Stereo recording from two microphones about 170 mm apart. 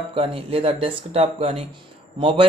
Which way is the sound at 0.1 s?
35° right (ahead or behind).